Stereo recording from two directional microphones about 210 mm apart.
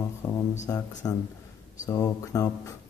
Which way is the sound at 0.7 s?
10° left (ahead or behind).